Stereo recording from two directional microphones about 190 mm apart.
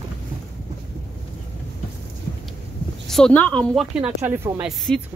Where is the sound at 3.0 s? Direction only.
5° left (ahead or behind).